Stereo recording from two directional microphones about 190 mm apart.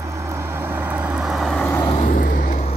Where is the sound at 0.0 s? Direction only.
15° right (ahead or behind); by 1.8 s 5° left (ahead or behind).